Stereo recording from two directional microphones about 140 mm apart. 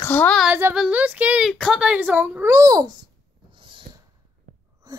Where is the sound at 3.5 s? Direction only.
35° right (ahead or behind).